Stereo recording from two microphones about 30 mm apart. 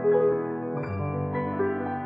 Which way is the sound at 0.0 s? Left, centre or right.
Centre.